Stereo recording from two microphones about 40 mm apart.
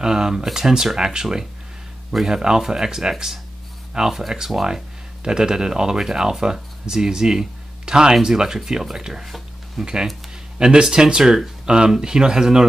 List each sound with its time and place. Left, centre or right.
0.0 s speech: centre
4.6 s speech: centre
9.2 s speech: centre
10.6 s speech: centre